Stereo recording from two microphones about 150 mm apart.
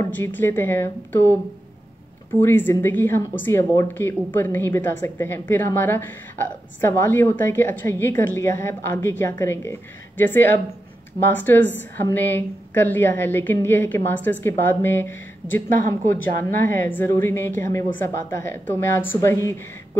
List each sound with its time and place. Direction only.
0.0 s a woman's voice: 15° left (ahead or behind)
2.4 s a woman's voice: 15° left (ahead or behind)